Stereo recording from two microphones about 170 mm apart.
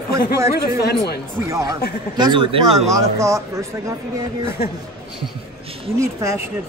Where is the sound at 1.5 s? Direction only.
20° right (ahead or behind).